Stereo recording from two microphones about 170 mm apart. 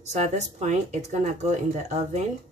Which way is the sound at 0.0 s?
45° right (ahead or behind).